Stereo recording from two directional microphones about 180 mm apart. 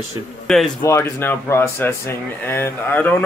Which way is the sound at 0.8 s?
15° left (ahead or behind).